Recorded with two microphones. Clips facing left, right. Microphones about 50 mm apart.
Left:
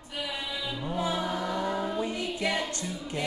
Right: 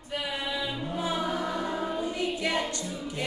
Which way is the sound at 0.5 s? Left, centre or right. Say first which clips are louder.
Right 3 dB; centre.